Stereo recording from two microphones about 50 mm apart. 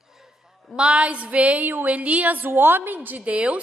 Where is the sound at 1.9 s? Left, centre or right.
Right.